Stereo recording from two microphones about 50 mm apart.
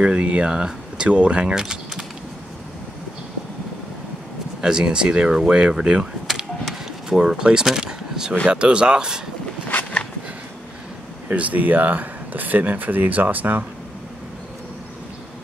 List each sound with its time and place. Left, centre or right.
0.0 s speech: right
1.5 s speech: centre
4.6 s speech: centre
6.2 s a sound: centre
8.5 s speech: centre
11.3 s speech: right